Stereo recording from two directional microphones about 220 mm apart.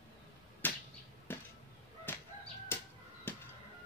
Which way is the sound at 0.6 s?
10° left (ahead or behind).